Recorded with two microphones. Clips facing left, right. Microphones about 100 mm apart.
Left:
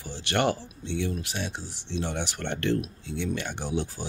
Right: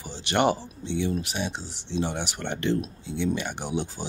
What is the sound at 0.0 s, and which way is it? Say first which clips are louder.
Speech: right 3 dB; 20° right (ahead or behind).